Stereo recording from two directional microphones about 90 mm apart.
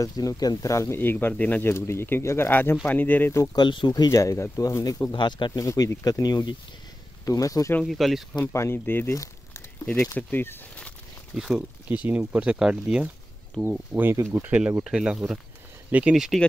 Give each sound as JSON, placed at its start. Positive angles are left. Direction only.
{"t": 0.0, "sound": "speech", "side_deg": 40}
{"t": 3.5, "sound": "speech", "side_deg": 60}
{"t": 5.1, "sound": "speech", "side_deg": 60}
{"t": 5.5, "sound": "speech", "side_deg": 40}
{"t": 7.8, "sound": "speech", "side_deg": 0}
{"t": 8.5, "sound": "speech", "side_deg": 25}
{"t": 10.1, "sound": "speech", "side_deg": 20}
{"t": 11.3, "sound": "speech", "side_deg": -5}
{"t": 11.9, "sound": "speech", "side_deg": -15}
{"t": 13.7, "sound": "speech", "side_deg": -20}
{"t": 14.8, "sound": "speech", "side_deg": -10}